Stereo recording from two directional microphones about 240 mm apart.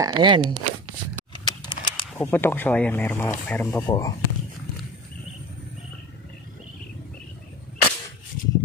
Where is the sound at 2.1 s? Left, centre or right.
Centre.